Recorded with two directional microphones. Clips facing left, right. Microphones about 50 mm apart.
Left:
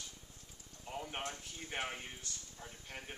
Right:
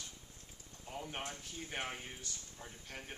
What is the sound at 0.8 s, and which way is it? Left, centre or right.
Speech, centre.